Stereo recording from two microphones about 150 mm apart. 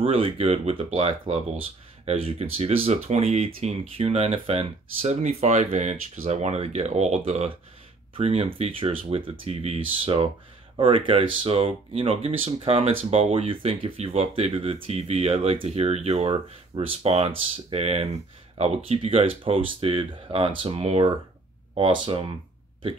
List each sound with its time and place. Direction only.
0.0 s speech: 40° right (ahead or behind)